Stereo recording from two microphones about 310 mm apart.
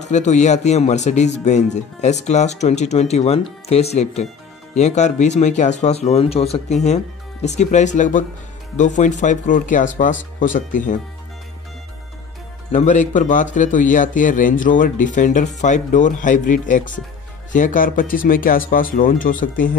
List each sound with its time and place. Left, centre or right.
0.0 s speech: left
12.7 s speech: left